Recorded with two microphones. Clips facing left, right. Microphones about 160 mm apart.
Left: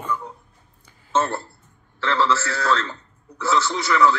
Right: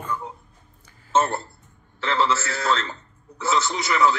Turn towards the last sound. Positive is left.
turn(degrees=-20)  # may be behind; listen again after turning